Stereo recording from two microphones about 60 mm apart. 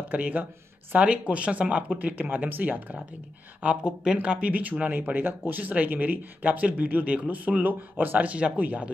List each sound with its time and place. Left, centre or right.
0.1 s speech: right
3.6 s speech: centre